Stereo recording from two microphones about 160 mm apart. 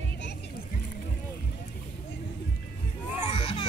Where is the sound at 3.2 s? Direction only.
35° left (ahead or behind).